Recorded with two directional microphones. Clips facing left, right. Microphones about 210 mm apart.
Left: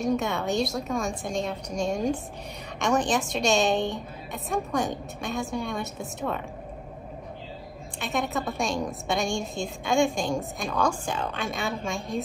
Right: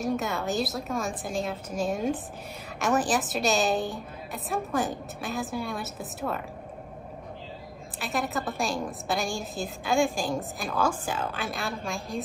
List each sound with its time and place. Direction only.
0.0 s a woman's voice: centre (ahead or behind)
8.0 s a woman's voice: centre (ahead or behind)